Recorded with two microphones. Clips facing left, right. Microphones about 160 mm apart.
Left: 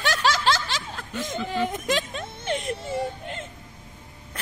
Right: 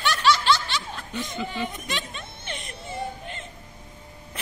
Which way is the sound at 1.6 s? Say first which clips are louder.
Left 6 dB; 90° left.